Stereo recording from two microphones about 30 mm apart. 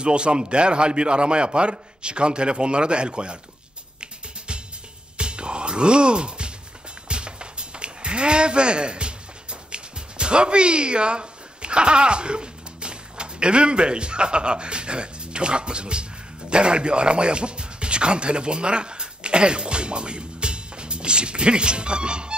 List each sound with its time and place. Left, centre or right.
0.0 s a man's voice: right
5.1 s music: right